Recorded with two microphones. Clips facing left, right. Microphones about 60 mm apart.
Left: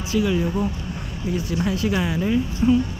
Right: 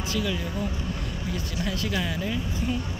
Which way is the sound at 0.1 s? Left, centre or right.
Centre.